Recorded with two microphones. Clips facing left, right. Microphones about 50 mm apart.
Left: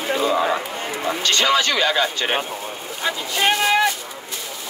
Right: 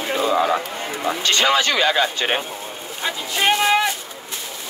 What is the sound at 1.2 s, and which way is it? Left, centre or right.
Speech, right.